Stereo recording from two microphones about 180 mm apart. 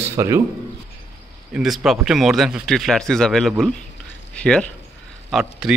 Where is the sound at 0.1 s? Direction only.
15° right (ahead or behind).